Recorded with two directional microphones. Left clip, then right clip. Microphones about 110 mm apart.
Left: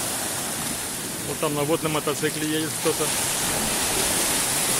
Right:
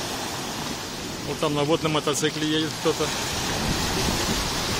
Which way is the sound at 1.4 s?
25° right (ahead or behind).